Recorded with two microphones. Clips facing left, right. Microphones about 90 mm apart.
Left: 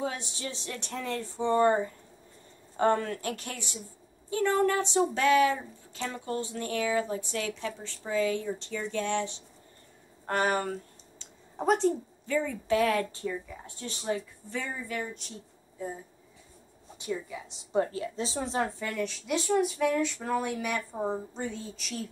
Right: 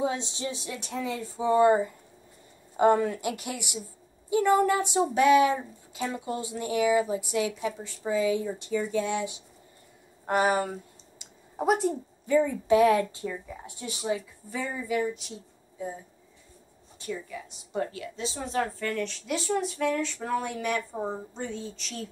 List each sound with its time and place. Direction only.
0.0 s speech: 20° right (ahead or behind); by 15.9 s centre (ahead or behind)
17.0 s a woman's voice: 15° left (ahead or behind)
18.8 s speech: 10° left (ahead or behind)